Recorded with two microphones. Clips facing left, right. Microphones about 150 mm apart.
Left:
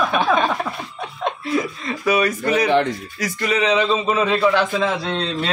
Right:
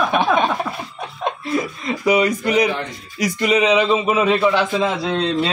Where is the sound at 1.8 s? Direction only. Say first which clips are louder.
Right 4 dB; 20° right (ahead or behind).